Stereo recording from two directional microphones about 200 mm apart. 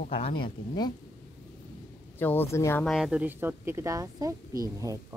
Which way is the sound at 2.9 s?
5° right (ahead or behind).